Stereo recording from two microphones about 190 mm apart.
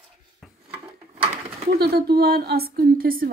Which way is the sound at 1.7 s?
55° right (ahead or behind).